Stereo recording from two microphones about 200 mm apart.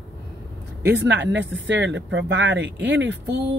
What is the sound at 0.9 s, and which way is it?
Speech, 65° right (ahead or behind).